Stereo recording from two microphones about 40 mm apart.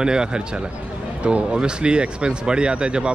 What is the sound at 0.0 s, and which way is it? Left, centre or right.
Speech, centre.